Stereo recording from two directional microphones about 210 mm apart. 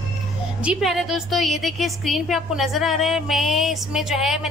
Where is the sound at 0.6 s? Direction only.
5° right (ahead or behind).